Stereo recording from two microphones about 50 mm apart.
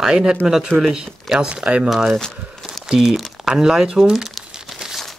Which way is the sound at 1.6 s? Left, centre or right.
Right.